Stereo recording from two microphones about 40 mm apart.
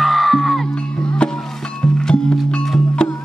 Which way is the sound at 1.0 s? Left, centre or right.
Left.